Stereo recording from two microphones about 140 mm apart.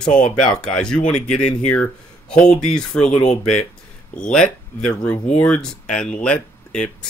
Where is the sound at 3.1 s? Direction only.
50° left (ahead or behind).